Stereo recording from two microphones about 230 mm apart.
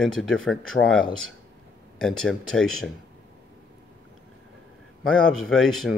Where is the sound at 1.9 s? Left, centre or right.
Centre.